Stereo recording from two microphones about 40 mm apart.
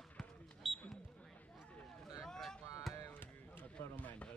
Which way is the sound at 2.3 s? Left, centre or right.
Centre.